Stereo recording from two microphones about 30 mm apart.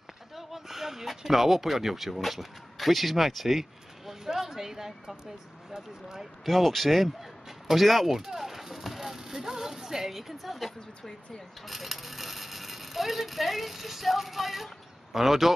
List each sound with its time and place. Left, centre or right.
0.4 s speech: centre
6.4 s speech: centre
8.2 s speech: centre